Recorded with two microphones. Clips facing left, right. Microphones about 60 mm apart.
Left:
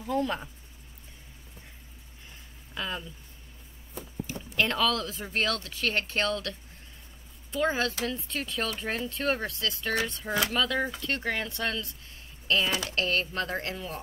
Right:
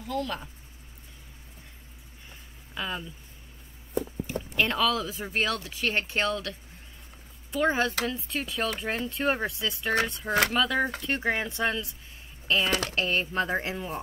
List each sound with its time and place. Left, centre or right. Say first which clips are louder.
0.0 s speech: left 3 dB; left
2.7 s speech: right 1 dB; centre
4.3 s speech: left 2 dB; centre
7.5 s speech: right 2 dB; centre
12.6 s speech: right 3 dB; right
12.9 s speech: right 2 dB; centre